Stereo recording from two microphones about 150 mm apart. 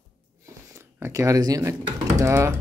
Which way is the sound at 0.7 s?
20° right (ahead or behind).